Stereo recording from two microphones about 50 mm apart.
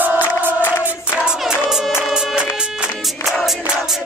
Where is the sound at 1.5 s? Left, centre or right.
Centre.